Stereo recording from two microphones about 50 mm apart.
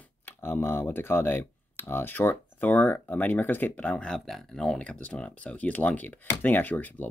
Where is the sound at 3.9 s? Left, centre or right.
Centre.